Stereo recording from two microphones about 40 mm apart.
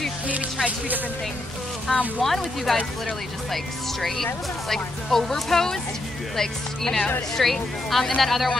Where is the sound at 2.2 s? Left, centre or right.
Centre.